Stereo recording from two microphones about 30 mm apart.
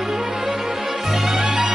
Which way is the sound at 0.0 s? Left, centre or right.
Centre.